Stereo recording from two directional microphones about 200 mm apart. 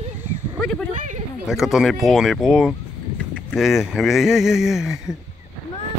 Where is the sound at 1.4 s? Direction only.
Centre (ahead or behind).